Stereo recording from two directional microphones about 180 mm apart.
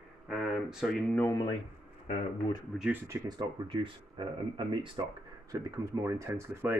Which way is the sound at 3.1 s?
25° right (ahead or behind).